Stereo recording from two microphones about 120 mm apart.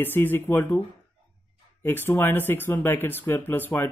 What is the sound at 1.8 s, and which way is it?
Speech, 20° left (ahead or behind).